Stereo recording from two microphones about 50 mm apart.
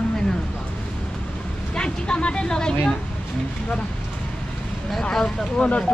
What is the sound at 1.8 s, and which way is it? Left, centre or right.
Speech, centre.